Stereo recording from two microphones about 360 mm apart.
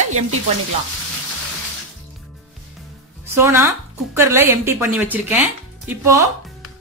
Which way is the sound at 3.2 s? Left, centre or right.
Centre.